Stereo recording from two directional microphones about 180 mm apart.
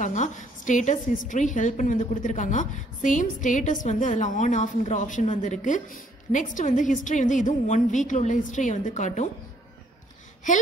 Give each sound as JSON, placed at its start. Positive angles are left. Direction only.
{"t": 0.0, "sound": "a woman's voice", "side_deg": 45}